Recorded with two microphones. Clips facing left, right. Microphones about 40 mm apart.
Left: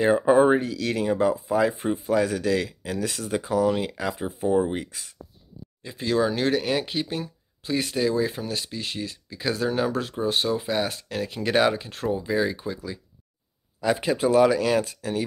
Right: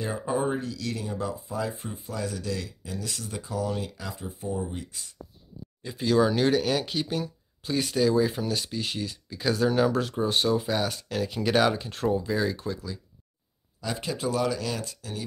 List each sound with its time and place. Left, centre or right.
0.0 s speech: left
1.1 s speech: left
3.9 s speech: left
5.8 s speech: centre
12.1 s speech: centre
13.7 s speech: left